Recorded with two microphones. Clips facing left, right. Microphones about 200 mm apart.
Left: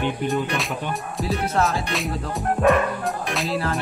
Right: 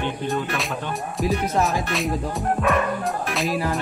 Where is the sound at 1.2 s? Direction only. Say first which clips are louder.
Right 1 dB; 15° right (ahead or behind).